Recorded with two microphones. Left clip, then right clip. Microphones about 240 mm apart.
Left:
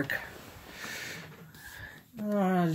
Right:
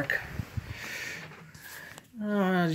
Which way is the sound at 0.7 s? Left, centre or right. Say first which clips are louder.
Right 2 dB; centre.